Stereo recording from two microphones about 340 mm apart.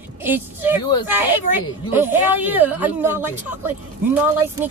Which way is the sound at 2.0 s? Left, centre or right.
Centre.